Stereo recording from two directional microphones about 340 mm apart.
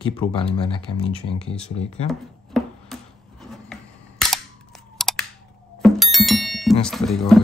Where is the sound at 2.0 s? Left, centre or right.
Centre.